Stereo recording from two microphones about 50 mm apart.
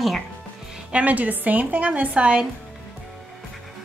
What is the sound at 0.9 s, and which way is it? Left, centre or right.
A woman's voice, right.